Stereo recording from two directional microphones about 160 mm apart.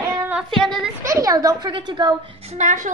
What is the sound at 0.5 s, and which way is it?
Speech, centre (ahead or behind).